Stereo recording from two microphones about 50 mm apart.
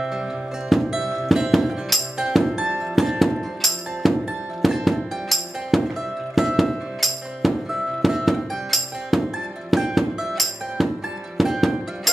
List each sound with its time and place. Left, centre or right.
0.7 s music: centre